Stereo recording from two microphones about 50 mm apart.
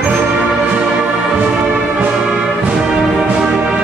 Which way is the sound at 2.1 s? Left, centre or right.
Centre.